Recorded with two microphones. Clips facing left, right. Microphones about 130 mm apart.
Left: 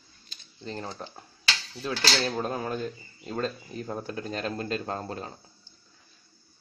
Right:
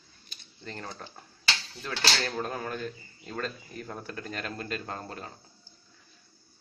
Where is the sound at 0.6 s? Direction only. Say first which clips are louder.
Left 4 dB; 20° left (ahead or behind).